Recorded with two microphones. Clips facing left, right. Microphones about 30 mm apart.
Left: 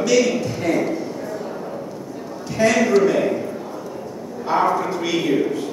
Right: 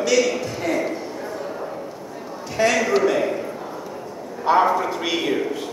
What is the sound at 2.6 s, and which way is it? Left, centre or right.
Speech, centre.